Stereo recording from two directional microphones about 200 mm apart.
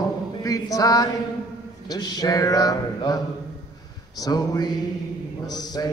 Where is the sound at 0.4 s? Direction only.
15° left (ahead or behind).